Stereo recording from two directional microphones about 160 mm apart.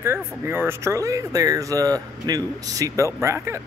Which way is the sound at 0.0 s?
15° right (ahead or behind).